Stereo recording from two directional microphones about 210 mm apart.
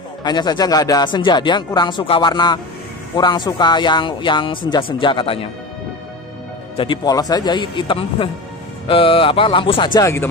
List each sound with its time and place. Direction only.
0.2 s speech: 20° left (ahead or behind)
6.8 s speech: 20° left (ahead or behind)